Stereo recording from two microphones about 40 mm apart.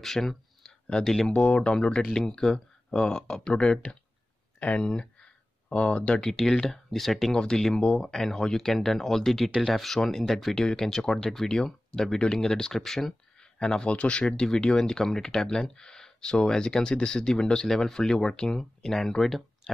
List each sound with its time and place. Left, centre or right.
0.0 s a sound: centre
1.0 s speech: centre
1.3 s speech: left
2.1 s speech: centre; by 4.8 s left
4.8 s a sound: left
6.5 s speech: centre
7.3 s speech: left; by 10.6 s centre
10.6 s speech: centre
13.6 s speech: left